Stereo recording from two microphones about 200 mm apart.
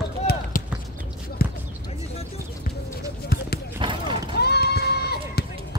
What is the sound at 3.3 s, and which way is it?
Basketball bounce, 50° left (ahead or behind).